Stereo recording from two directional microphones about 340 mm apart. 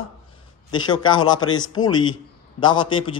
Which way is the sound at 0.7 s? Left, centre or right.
Centre.